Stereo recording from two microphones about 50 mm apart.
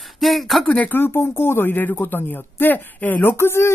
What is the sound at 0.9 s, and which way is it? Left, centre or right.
Speech, left.